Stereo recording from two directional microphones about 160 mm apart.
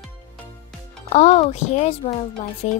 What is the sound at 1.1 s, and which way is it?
Music, 45° left (ahead or behind).